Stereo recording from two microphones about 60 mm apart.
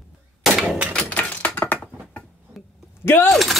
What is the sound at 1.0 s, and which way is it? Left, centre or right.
Typewriter, left.